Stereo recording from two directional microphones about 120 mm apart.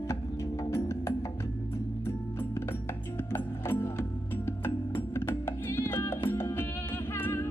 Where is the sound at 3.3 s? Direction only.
20° left (ahead or behind).